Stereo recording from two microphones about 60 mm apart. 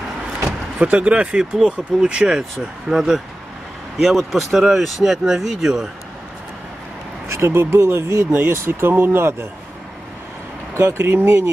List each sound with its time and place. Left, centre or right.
0.8 s speech: centre
7.2 s speech: right
8.3 s speech: right
10.8 s speech: right